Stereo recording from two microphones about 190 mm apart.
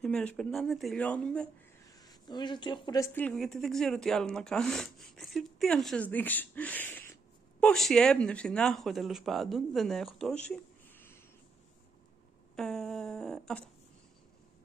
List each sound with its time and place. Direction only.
0.0 s speech: 5° left (ahead or behind)
1.9 s speech: 20° left (ahead or behind)
3.2 s speech: 5° left (ahead or behind)
12.5 s a sound: centre (ahead or behind)